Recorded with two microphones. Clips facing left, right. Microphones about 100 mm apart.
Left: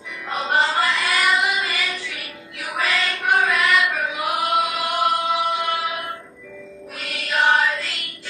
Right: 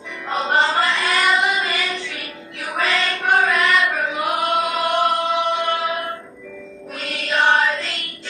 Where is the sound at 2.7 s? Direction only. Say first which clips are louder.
Right 2 dB; 30° right (ahead or behind).